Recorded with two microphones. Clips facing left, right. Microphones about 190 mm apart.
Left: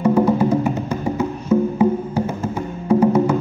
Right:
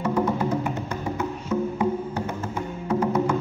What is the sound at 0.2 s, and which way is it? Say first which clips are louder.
Music: left 8 dB; 10° left (ahead or behind).